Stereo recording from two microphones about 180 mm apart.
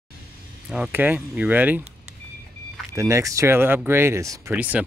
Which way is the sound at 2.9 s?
15° right (ahead or behind).